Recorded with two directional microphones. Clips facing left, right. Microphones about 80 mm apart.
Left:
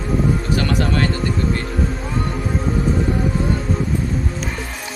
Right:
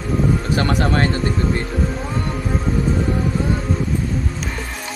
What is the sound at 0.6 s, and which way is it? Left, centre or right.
Speech, right.